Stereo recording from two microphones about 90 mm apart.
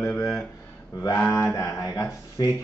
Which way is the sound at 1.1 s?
30° left (ahead or behind).